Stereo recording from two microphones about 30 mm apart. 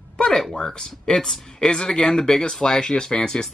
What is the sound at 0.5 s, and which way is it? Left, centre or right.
Speech, left.